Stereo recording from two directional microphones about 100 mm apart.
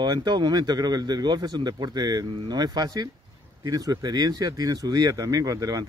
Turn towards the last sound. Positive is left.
turn(degrees=-35)  # may be behind; listen again after turning